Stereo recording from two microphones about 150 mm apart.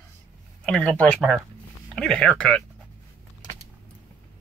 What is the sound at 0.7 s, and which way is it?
Speech, 5° left (ahead or behind).